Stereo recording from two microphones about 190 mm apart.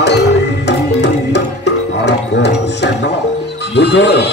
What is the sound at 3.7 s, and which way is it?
Speech, 65° left (ahead or behind).